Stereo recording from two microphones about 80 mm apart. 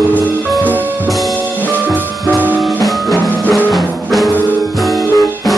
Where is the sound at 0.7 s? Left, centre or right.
Right.